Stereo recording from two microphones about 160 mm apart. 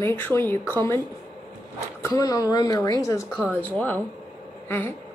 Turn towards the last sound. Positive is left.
turn(degrees=10)  # may be behind; listen again after turning